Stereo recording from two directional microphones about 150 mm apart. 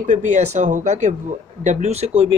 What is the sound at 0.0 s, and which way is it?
A man's voice, 55° right (ahead or behind).